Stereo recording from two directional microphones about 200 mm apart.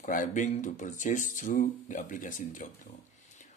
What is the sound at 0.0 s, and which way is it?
Speech, 40° left (ahead or behind).